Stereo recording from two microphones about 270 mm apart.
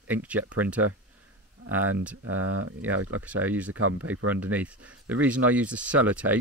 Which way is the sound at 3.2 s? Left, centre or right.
Centre.